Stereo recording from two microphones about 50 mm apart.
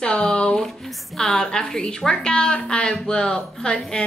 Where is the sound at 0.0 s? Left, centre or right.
Centre.